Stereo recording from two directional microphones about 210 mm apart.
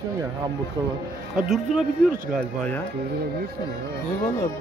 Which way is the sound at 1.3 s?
Centre (ahead or behind).